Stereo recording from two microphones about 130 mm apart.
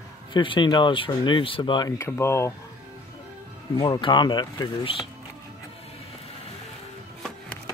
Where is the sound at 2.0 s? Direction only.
20° left (ahead or behind).